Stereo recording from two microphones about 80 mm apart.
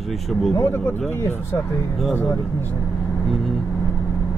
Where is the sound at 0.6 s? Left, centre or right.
Left.